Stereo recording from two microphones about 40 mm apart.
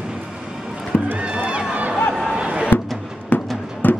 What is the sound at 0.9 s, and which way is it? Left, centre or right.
Run, left.